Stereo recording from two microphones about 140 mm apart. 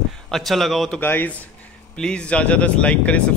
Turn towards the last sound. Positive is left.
turn(degrees=10)  # may be behind; listen again after turning